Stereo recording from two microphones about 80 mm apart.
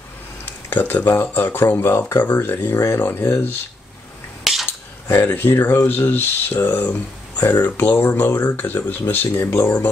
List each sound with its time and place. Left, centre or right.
0.7 s speech: left
4.5 s a sound: centre
5.0 s speech: left